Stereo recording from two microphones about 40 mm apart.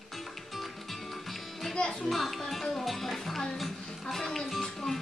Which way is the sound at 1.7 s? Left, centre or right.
Centre.